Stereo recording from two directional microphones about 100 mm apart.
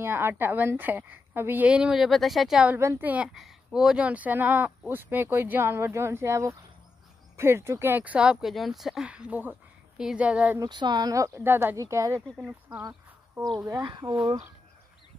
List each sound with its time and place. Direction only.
0.0 s speech: 25° right (ahead or behind)
1.7 s speech: 10° right (ahead or behind)
3.0 s speech: 15° right (ahead or behind)
3.3 s speech: 5° right (ahead or behind)
10.6 s speech: 50° right (ahead or behind); by 12.2 s 30° right (ahead or behind)
12.4 s speech: 15° right (ahead or behind)
13.8 s speech: 50° right (ahead or behind)